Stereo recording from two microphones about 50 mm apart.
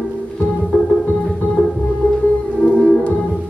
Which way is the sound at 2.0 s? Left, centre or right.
Left.